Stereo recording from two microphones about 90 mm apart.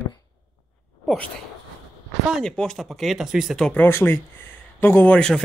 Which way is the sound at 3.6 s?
15° left (ahead or behind).